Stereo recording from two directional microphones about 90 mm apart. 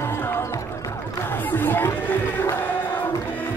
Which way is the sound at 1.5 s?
25° left (ahead or behind).